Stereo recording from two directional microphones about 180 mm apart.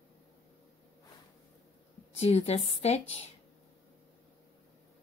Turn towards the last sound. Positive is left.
turn(degrees=35)  # may be behind; listen again after turning